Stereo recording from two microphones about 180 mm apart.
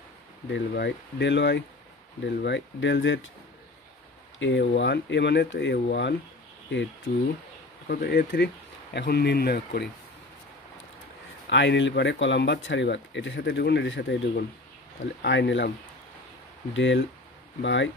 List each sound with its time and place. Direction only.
0.5 s speech: 75° left (ahead or behind); by 3.2 s 90° left
4.4 s speech: 80° left
7.9 s speech: 60° left (ahead or behind)
11.4 s speech: 80° left
16.7 s speech: 90° left